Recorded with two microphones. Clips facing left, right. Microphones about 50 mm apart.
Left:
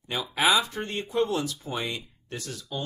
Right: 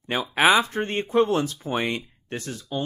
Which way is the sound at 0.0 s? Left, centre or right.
Right.